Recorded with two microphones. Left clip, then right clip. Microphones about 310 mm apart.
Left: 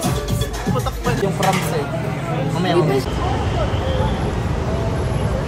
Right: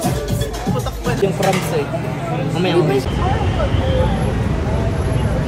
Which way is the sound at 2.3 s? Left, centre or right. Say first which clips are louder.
Right 1 dB; centre.